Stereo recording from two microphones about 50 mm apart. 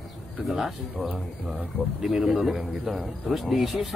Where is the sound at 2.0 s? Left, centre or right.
Centre.